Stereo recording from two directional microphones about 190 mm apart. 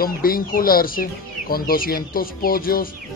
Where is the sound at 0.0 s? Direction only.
50° left (ahead or behind).